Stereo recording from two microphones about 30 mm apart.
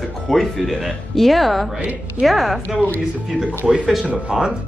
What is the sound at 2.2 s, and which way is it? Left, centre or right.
Speech, centre.